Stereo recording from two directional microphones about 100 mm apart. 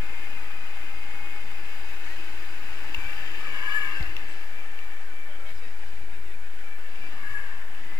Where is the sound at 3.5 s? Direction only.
40° left (ahead or behind).